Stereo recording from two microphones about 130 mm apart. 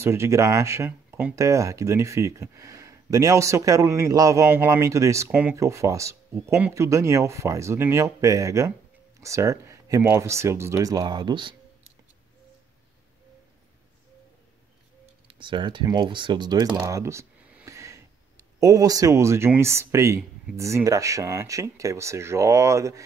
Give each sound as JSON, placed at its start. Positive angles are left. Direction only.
{"t": 0.0, "sound": "speech", "side_deg": -20}
{"t": 5.3, "sound": "speech", "side_deg": -10}
{"t": 5.6, "sound": "speech", "side_deg": -25}
{"t": 15.2, "sound": "speech", "side_deg": -40}
{"t": 16.8, "sound": "speech", "side_deg": -25}
{"t": 17.6, "sound": "a sound", "side_deg": -25}
{"t": 18.6, "sound": "speech", "side_deg": -30}